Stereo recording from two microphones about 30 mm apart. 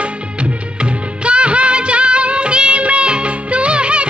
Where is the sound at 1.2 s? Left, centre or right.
Right.